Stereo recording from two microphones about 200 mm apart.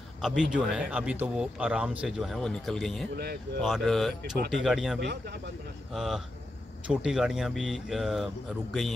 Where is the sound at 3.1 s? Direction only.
50° right (ahead or behind).